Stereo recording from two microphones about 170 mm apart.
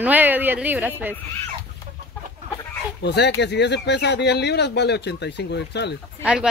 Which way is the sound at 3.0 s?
85° left.